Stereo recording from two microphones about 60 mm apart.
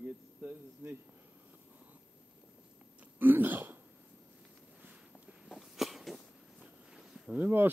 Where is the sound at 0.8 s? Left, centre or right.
Right.